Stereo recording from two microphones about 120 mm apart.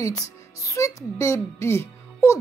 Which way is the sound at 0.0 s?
25° left (ahead or behind).